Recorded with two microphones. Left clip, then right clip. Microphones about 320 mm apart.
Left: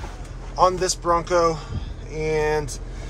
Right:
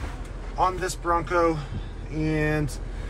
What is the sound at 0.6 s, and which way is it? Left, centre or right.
Speech, centre.